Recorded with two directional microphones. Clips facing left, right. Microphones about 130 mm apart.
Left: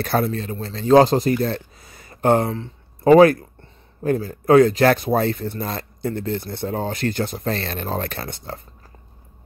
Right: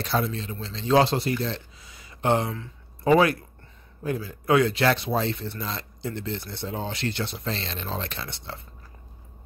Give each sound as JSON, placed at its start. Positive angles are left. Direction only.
{"t": 0.0, "sound": "speech", "side_deg": 50}